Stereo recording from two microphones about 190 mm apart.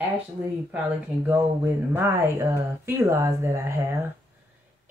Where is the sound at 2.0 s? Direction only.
10° right (ahead or behind).